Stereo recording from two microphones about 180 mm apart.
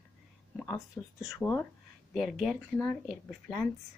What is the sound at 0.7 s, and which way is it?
Speech, 20° left (ahead or behind).